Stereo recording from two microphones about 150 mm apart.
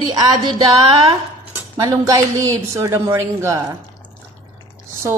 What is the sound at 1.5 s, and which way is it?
Speech, 20° right (ahead or behind).